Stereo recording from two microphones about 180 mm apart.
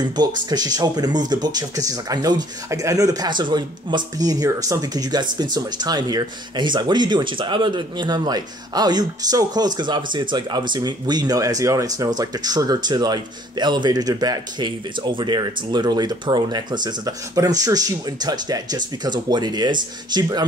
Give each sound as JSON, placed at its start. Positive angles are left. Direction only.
{"t": 0.1, "sound": "speech", "side_deg": -25}